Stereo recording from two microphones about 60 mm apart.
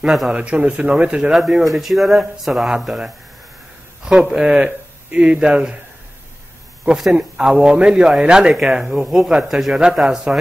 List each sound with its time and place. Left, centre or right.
0.3 s speech: centre
1.3 s speech: centre
4.0 s speech: centre
7.1 s speech: centre